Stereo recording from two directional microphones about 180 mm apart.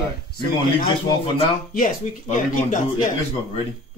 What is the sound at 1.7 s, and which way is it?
Speech, 50° left (ahead or behind).